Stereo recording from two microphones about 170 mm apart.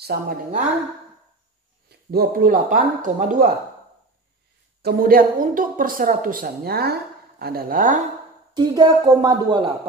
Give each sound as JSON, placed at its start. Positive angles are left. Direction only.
{"t": 0.1, "sound": "a woman's voice", "side_deg": -60}
{"t": 1.9, "sound": "a woman's voice", "side_deg": -65}
{"t": 4.8, "sound": "a woman's voice", "side_deg": -60}
{"t": 8.5, "sound": "speech", "side_deg": -25}